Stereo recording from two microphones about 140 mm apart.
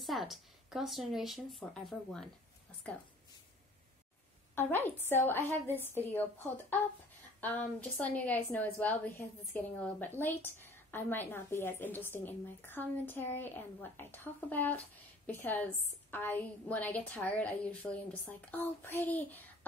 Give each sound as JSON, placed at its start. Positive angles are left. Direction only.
{"t": 0.0, "sound": "speech", "side_deg": 0}
{"t": 4.6, "sound": "a woman's voice", "side_deg": 15}